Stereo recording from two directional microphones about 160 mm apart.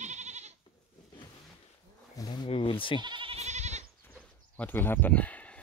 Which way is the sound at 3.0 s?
30° right (ahead or behind).